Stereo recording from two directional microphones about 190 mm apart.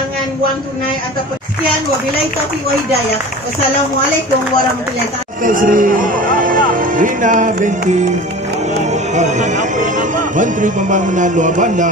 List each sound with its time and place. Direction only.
5.4 s speech: 45° right (ahead or behind)
9.1 s speech: 40° right (ahead or behind)